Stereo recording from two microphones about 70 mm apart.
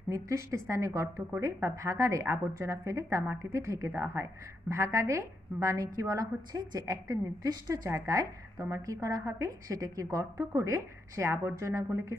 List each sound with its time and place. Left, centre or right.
0.1 s a woman's voice: right